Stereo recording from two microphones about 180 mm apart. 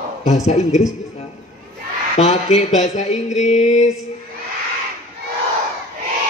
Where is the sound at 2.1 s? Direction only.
35° left (ahead or behind).